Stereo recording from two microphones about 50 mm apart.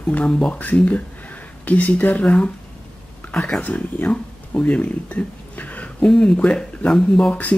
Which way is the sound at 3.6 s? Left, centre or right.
Left.